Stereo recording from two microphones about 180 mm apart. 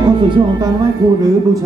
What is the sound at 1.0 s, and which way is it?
Speech, 20° right (ahead or behind).